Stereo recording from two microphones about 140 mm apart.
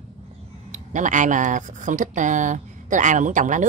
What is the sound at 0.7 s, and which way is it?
Speech, 60° right (ahead or behind).